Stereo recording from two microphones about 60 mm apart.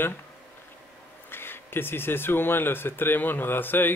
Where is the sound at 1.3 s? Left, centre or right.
Left.